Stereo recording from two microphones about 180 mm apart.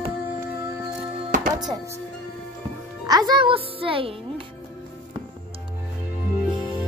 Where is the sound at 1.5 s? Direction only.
20° right (ahead or behind).